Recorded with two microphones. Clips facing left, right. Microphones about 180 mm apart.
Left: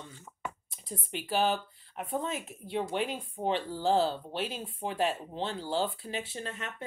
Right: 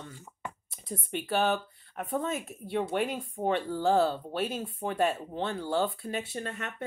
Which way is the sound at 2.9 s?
55° right (ahead or behind).